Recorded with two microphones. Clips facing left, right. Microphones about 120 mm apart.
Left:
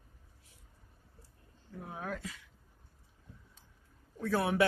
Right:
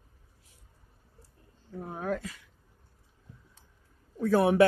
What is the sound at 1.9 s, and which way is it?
Speech, 50° right (ahead or behind).